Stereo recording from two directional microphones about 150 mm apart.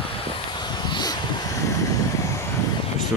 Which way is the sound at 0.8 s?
30° left (ahead or behind).